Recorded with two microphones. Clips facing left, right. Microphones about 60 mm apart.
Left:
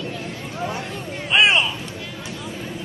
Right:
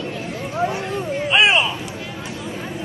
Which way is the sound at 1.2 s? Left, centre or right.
Centre.